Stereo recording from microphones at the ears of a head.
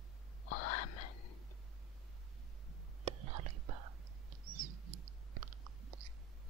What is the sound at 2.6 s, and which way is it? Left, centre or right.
Whispering, right.